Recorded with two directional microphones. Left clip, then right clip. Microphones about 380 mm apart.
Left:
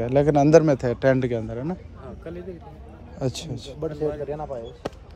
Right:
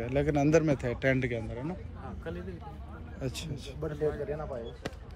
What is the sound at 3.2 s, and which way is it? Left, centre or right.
Speech, centre.